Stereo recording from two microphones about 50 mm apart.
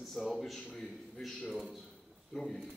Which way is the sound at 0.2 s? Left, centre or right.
Centre.